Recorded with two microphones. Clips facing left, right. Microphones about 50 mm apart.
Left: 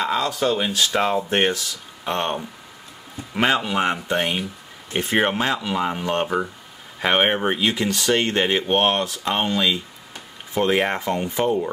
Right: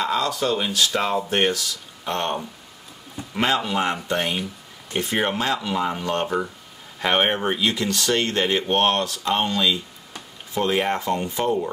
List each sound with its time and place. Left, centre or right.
0.0 s speech: centre
3.3 s speech: centre
6.2 s speech: centre